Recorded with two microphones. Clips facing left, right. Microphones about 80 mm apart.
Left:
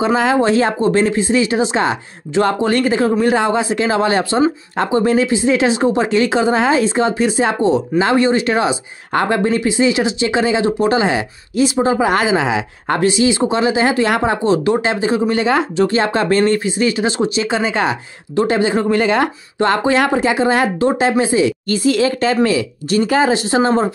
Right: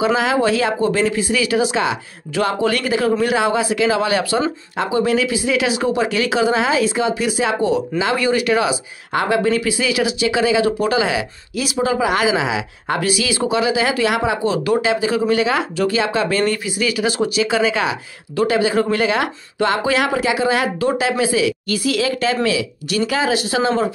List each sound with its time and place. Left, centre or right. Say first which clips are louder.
0.0 s speech: left 2 dB; left
9.5 s speech: left 3 dB; left
13.0 s speech: left 7 dB; left
16.0 s speech: left 3 dB; left